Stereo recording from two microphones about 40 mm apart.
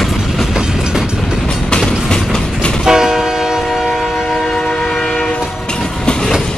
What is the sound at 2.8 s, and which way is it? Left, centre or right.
Train, centre.